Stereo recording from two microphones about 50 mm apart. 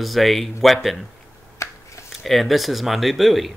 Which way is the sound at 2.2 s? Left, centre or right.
Centre.